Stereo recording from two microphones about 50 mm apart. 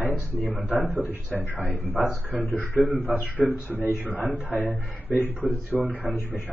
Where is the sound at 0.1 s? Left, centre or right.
Left.